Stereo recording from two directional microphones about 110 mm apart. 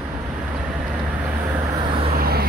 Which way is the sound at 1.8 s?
50° right (ahead or behind).